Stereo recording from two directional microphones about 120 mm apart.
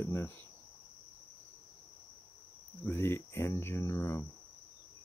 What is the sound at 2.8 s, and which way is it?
Speech, 20° left (ahead or behind).